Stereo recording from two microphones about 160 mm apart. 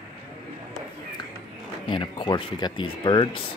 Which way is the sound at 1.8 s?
30° left (ahead or behind).